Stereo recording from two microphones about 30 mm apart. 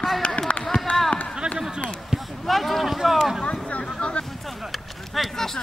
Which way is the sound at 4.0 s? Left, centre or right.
Left.